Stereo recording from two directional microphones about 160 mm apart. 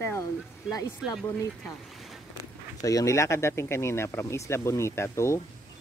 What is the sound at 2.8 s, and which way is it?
Speech, 20° left (ahead or behind).